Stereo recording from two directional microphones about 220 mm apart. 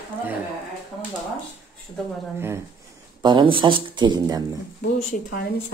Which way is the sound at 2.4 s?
10° right (ahead or behind).